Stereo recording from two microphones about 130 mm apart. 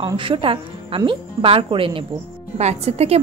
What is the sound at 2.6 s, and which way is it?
Speech, 55° right (ahead or behind).